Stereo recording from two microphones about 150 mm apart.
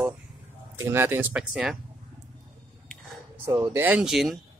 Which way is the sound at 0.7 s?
15° right (ahead or behind).